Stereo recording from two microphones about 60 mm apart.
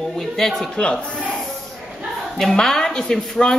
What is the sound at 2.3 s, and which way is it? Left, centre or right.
Speech, centre.